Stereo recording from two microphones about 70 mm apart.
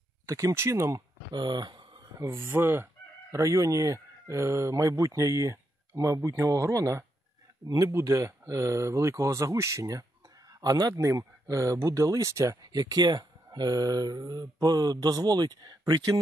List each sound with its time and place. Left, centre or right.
0.3 s speech: right
1.3 s a sound: right
2.2 s chicken: right
7.6 s speech: right
10.6 s speech: right
11.0 s speech: right
12.6 s speech: right